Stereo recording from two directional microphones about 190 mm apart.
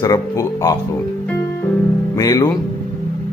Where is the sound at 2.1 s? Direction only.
15° left (ahead or behind).